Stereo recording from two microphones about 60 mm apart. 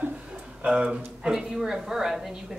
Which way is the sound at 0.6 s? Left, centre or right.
Centre.